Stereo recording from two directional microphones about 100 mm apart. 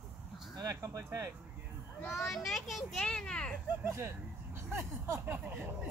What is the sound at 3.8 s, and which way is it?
Speech, 25° right (ahead or behind).